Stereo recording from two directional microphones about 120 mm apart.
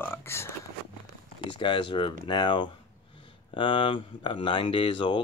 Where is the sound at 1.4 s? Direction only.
45° left (ahead or behind).